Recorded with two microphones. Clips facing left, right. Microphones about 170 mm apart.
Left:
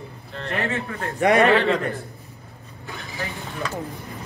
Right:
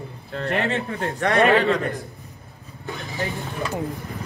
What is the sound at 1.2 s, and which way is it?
Speech, 15° left (ahead or behind).